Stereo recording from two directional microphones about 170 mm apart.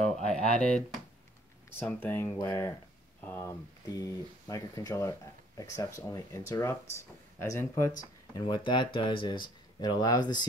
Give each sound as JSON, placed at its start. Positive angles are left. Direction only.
{"t": 0.5, "sound": "speech", "side_deg": 5}
{"t": 8.0, "sound": "speech", "side_deg": 25}